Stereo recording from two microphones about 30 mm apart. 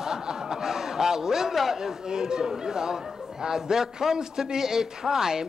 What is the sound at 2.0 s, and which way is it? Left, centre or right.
A man's voice, right.